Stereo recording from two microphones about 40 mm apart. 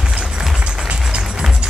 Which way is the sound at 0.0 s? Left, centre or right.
Right.